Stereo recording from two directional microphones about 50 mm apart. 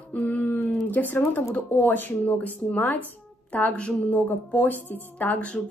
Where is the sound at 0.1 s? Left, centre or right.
Left.